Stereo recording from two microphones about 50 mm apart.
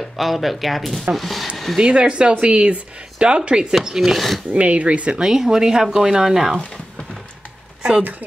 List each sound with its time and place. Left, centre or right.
0.2 s speech: centre
1.8 s speech: centre
4.5 s speech: right
5.1 s speech: centre